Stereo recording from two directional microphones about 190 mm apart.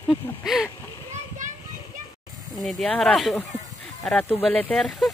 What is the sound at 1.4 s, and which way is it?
Children playing, 40° right (ahead or behind).